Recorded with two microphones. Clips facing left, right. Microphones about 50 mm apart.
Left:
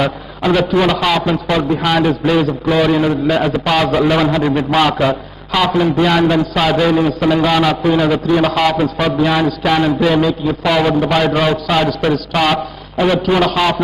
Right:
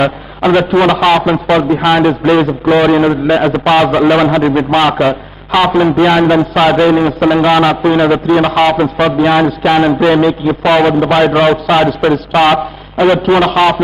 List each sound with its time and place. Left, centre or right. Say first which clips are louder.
0.0 s a man's voice: right 5 dB; centre